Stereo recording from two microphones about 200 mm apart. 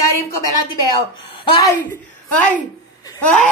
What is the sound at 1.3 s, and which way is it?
Speech, 25° left (ahead or behind).